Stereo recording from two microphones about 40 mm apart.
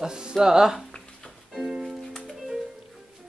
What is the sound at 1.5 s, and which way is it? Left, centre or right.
Music, centre.